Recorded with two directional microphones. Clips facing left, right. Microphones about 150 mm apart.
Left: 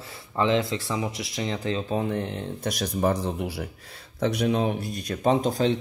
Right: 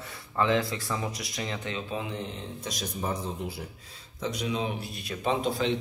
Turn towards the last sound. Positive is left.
turn(degrees=40)  # may be behind; listen again after turning